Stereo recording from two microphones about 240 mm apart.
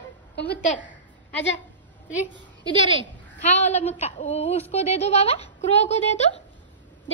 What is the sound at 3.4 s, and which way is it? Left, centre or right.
Speech, left.